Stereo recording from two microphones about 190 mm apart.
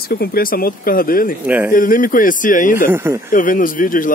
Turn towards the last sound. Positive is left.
turn(degrees=45)  # may be behind; listen again after turning